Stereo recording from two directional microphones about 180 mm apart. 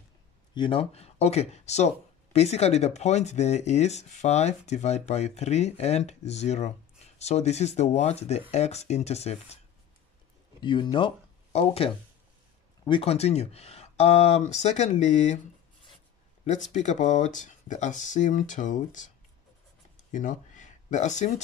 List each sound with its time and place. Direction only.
0.6 s speech: 30° left (ahead or behind)
10.6 s speech: 25° left (ahead or behind); by 15.3 s 40° left (ahead or behind)
16.4 s speech: 40° left (ahead or behind)
20.0 s a sound: 45° left (ahead or behind)